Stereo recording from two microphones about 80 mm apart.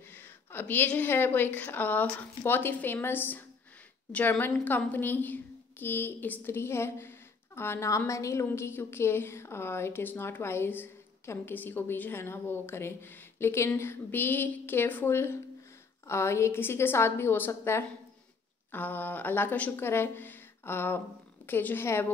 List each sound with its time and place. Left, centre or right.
0.1 s a woman's voice: left